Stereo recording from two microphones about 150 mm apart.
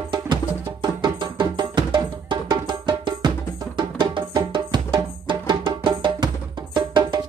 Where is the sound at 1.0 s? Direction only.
30° right (ahead or behind).